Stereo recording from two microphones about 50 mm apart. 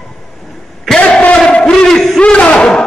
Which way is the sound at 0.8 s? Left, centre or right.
Centre.